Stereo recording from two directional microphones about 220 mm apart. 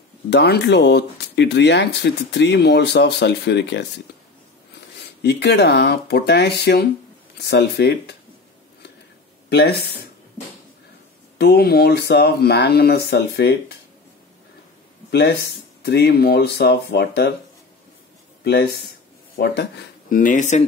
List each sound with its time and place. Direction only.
0.3 s speech: 50° left (ahead or behind)
5.2 s speech: 50° left (ahead or behind)
9.5 s speech: 45° left (ahead or behind)
11.3 s speech: 45° left (ahead or behind)
15.0 s speech: 45° left (ahead or behind)
18.4 s speech: 45° left (ahead or behind)